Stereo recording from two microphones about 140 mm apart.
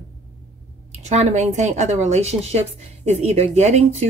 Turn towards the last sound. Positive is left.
turn(degrees=-50)  # may be behind; listen again after turning